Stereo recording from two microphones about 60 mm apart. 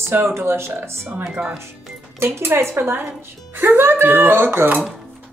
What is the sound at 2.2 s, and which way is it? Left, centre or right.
A woman's voice, right.